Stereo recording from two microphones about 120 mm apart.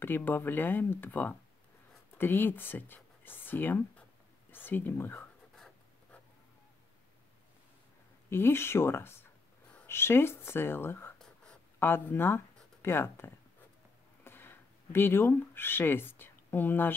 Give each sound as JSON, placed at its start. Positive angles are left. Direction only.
{"t": 0.0, "sound": "speech", "side_deg": 15}
{"t": 8.3, "sound": "speech", "side_deg": 20}
{"t": 11.1, "sound": "writing", "side_deg": 5}
{"t": 11.8, "sound": "speech", "side_deg": 20}